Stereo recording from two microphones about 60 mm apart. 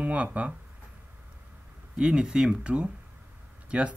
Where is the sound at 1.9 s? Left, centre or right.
Centre.